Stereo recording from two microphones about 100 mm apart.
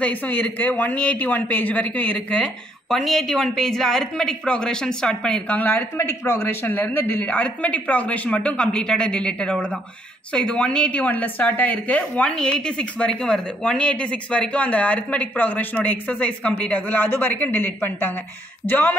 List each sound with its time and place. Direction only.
0.0 s speech: 15° left (ahead or behind)